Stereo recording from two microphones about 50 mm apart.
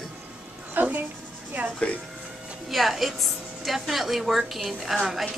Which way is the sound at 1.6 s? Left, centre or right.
Right.